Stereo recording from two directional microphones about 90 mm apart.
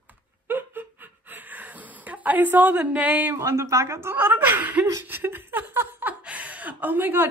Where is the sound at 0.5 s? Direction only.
20° right (ahead or behind).